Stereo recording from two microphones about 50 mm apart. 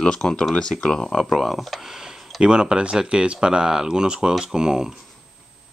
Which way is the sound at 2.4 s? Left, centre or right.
Centre.